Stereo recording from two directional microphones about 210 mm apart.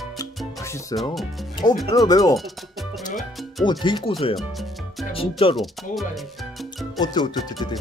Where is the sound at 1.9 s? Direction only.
15° left (ahead or behind).